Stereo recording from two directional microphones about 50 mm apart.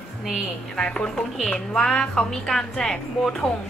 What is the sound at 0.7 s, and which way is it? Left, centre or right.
Speech, centre.